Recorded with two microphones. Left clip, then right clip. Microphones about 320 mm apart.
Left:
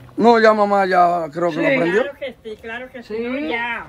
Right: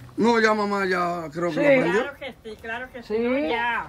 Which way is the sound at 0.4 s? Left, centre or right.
Centre.